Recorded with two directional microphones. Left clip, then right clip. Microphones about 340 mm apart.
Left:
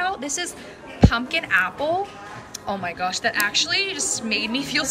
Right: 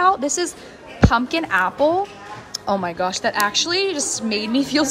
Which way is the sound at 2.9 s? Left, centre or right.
Centre.